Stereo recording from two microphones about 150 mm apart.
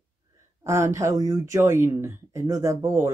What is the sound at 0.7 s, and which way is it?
Speech, 20° right (ahead or behind).